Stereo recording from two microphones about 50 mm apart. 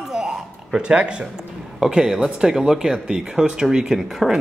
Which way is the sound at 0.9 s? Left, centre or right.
Right.